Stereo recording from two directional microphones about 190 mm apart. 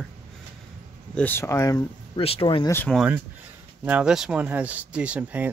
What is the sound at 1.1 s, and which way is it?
Speech, 10° left (ahead or behind).